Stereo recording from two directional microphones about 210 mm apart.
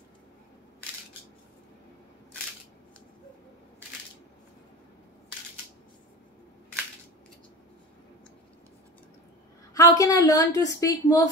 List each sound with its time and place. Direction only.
9.8 s a woman's voice: 15° left (ahead or behind)